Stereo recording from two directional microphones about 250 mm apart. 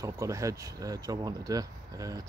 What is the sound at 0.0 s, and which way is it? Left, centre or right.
Speech, centre.